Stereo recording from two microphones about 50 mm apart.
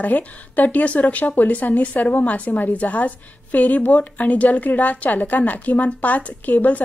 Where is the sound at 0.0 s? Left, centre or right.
Left.